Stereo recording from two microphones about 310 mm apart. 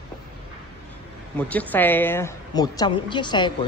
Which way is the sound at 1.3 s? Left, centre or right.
Centre.